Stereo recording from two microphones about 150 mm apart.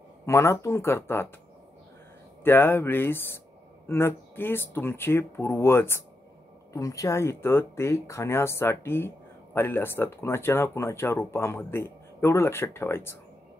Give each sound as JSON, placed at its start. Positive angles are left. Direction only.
{"t": 0.3, "sound": "speech", "side_deg": 20}
{"t": 2.4, "sound": "speech", "side_deg": 15}